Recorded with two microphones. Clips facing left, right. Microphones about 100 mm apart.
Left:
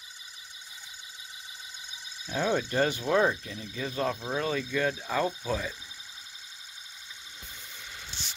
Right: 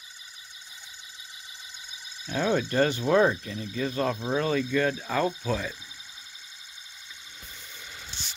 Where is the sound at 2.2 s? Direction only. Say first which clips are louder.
Right 2 dB; 5° left (ahead or behind).